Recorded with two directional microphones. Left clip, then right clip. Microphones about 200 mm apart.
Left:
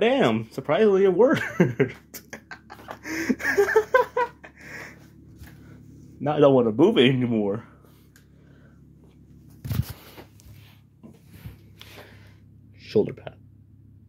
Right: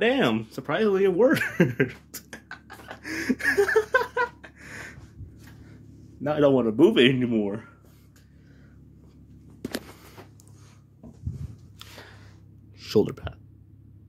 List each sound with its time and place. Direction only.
0.0 s a sound: 5° left (ahead or behind); by 4.9 s 10° right (ahead or behind)
6.2 s speech: 5° left (ahead or behind)
12.8 s speech: 25° right (ahead or behind)